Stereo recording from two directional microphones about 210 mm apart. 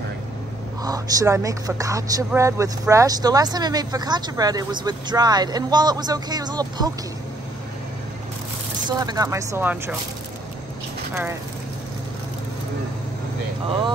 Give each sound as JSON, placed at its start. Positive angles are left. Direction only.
{"t": 0.8, "sound": "speech", "side_deg": -15}
{"t": 8.8, "sound": "speech", "side_deg": -20}